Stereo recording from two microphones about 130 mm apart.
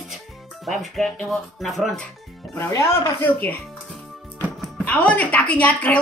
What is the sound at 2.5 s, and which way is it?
Speech, 25° left (ahead or behind).